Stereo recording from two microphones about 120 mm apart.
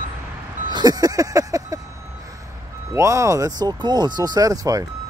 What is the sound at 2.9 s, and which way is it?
Speech, 25° right (ahead or behind).